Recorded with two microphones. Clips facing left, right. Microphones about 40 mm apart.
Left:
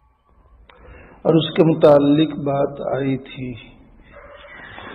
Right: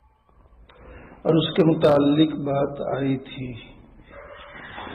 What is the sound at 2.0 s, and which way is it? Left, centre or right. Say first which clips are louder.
Speech: left 3 dB; centre.